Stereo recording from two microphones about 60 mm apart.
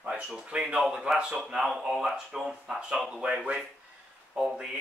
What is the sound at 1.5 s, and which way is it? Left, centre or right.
Speech, centre.